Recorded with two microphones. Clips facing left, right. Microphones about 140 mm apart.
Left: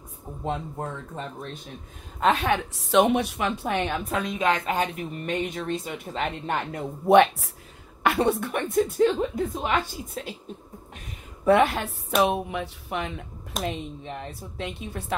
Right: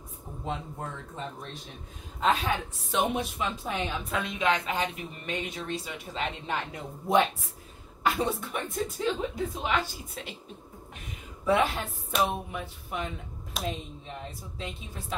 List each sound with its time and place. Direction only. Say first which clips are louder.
0.7 s speech: left 4 dB; 45° left (ahead or behind)
2.1 s a woman's voice: left 4 dB; 60° left (ahead or behind)
4.1 s a woman's voice: left 2 dB; 45° left (ahead or behind); by 9.1 s 60° left (ahead or behind)
9.5 s speech: left 3 dB; 50° left (ahead or behind)
11.4 s a woman's voice: left 6 dB; 60° left (ahead or behind)